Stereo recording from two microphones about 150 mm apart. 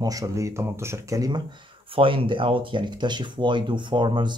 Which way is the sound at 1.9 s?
35° right (ahead or behind).